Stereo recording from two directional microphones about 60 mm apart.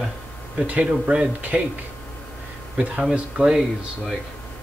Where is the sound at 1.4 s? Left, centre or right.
Right.